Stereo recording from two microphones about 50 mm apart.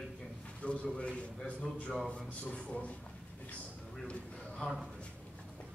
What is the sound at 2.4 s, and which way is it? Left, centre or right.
Speech, left.